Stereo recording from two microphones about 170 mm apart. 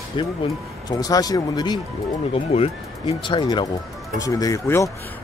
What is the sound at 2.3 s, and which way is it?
Speech, 35° left (ahead or behind).